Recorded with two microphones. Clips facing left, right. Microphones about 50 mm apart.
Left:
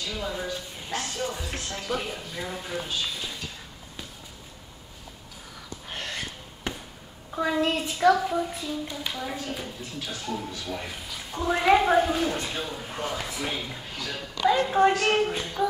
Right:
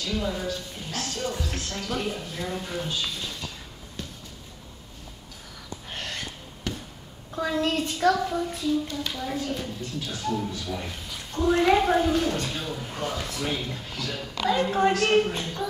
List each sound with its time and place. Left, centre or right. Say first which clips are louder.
0.0 s speech: right 3 dB; centre
5.9 s gasp: left 1 dB; centre
6.7 s basketball bounce: even; left
7.3 s speech: left 1 dB; centre